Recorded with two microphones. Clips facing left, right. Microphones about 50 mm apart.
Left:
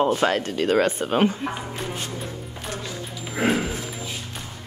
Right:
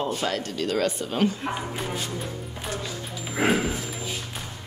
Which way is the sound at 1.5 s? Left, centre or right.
Centre.